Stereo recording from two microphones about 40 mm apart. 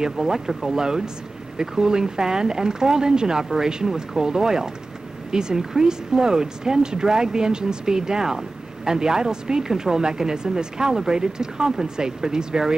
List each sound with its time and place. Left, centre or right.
0.0 s speech: centre